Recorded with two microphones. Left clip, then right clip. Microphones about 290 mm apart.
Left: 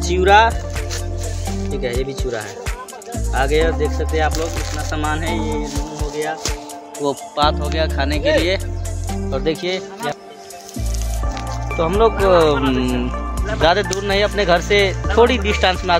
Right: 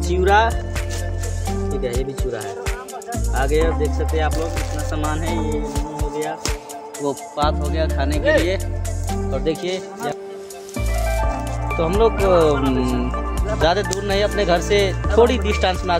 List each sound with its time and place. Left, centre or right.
0.0 s speech: centre
1.8 s music: centre
3.1 s speech: centre
4.3 s music: centre
7.0 s speech: centre
11.7 s speech: centre